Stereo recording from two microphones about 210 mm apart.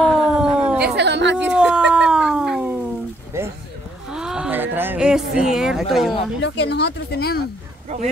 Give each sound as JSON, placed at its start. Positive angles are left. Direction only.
{"t": 0.0, "sound": "cat", "side_deg": -5}
{"t": 0.8, "sound": "howl", "side_deg": -55}
{"t": 1.5, "sound": "howl", "side_deg": -5}
{"t": 3.3, "sound": "a sound", "side_deg": -10}
{"t": 5.3, "sound": "a woman's voice", "side_deg": -5}
{"t": 6.4, "sound": "speech", "side_deg": 55}